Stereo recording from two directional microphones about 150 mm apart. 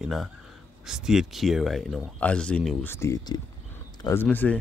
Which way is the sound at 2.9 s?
20° left (ahead or behind).